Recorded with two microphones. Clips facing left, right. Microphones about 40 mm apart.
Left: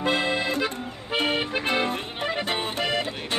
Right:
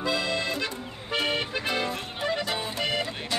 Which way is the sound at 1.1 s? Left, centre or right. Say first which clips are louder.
Left 3 dB; left.